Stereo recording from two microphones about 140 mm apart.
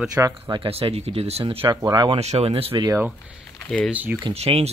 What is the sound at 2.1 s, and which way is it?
Speech, 50° right (ahead or behind).